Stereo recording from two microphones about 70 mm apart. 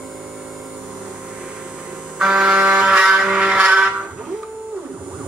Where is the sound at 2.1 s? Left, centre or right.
Centre.